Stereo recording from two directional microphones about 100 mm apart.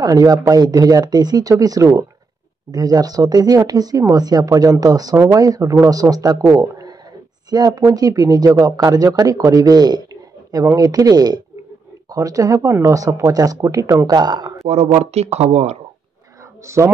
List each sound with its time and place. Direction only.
0.0 s speech: 35° right (ahead or behind)
6.5 s a sound: 35° right (ahead or behind)
7.4 s speech: 40° right (ahead or behind)
10.5 s speech: 35° right (ahead or behind)
14.7 s speech: 90° right
16.6 s speech: 30° right (ahead or behind)